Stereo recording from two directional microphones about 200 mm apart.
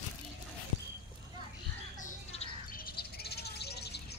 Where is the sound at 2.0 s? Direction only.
40° left (ahead or behind).